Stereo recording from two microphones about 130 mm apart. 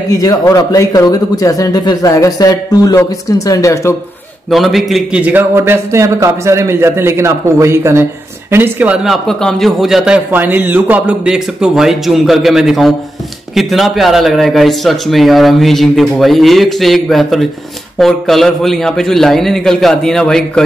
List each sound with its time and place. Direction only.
0.1 s speech: 25° left (ahead or behind)
4.5 s a man's voice: centre (ahead or behind)
5.2 s a man's voice: 15° right (ahead or behind); by 20.6 s 5° left (ahead or behind)